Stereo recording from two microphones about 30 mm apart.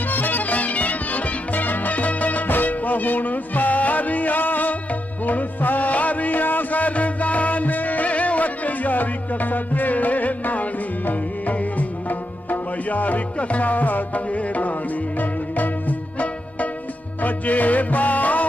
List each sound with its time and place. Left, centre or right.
0.1 s music: left
13.4 s music: left
15.1 s music: left
17.2 s music: left